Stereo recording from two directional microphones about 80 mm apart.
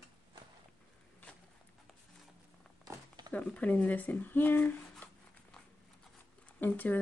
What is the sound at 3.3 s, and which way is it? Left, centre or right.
Speech, centre.